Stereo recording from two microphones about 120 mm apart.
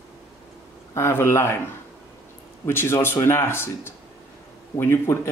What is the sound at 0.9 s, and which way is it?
Speech, 20° left (ahead or behind).